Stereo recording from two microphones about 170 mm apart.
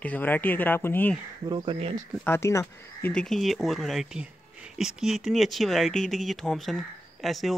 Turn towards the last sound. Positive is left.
turn(degrees=0)  # may be behind; listen again after turning